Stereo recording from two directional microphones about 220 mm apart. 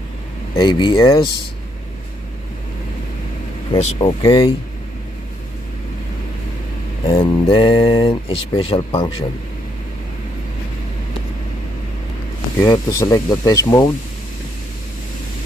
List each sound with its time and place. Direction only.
0.6 s speech: 20° left (ahead or behind)
3.7 s speech: 30° left (ahead or behind)
4.2 s speech: 20° left (ahead or behind)
7.1 s speech: 20° left (ahead or behind)
12.6 s speech: 15° left (ahead or behind)